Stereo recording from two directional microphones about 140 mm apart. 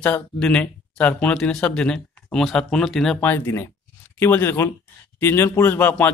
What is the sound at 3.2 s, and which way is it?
Speech, 15° left (ahead or behind).